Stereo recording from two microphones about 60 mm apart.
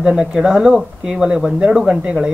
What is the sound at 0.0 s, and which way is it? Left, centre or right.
Speech, centre.